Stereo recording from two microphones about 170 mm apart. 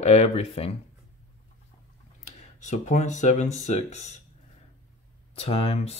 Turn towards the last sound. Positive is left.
turn(degrees=35)  # may be behind; listen again after turning